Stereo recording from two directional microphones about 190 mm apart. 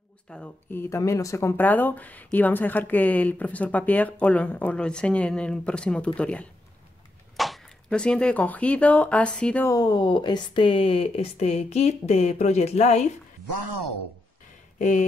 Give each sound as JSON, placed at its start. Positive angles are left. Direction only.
{"t": 0.3, "sound": "speech", "side_deg": 5}
{"t": 14.8, "sound": "speech", "side_deg": 40}